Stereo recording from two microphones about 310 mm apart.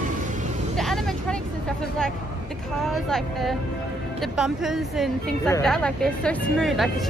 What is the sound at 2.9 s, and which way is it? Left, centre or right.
Speech, centre.